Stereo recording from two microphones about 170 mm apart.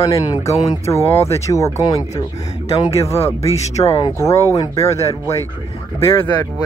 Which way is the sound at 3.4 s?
40° left (ahead or behind).